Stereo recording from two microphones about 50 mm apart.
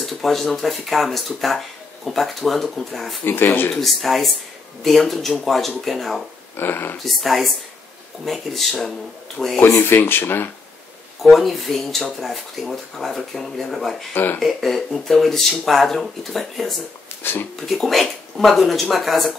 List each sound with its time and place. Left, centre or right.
0.0 s speech: centre
6.5 s speech: left
7.0 s speech: centre
9.8 s speech: left
11.2 s speech: centre
14.1 s speech: left
14.4 s speech: centre
17.2 s speech: left
17.6 s speech: centre